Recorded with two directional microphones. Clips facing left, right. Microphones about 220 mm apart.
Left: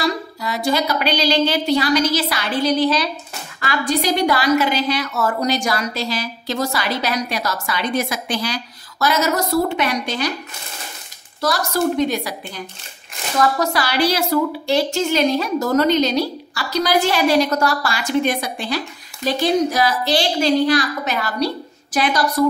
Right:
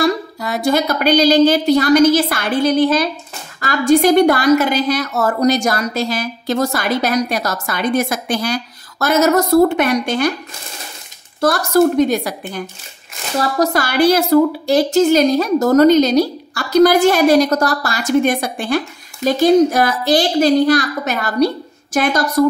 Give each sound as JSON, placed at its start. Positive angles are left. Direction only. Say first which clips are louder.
{"t": 0.0, "sound": "a sound", "louder": "right 5 dB", "side_deg": -50}
{"t": 0.7, "sound": "a woman's voice", "louder": "right 5 dB", "side_deg": -50}
{"t": 11.4, "sound": "a woman's voice", "louder": "right 6 dB", "side_deg": -50}
{"t": 13.4, "sound": "speech", "louder": "right 2 dB", "side_deg": -35}
{"t": 13.8, "sound": "a woman's voice", "louder": "right 7 dB", "side_deg": -50}